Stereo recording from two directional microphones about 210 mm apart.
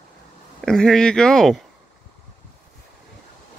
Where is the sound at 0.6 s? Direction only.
5° left (ahead or behind).